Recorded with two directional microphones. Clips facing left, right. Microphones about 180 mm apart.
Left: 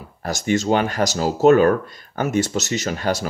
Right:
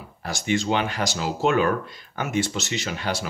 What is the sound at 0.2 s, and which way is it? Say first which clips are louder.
Speech: left 4 dB; 45° left (ahead or behind).